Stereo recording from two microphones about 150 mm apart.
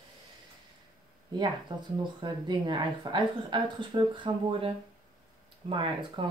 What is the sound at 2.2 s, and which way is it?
Speech, 30° right (ahead or behind).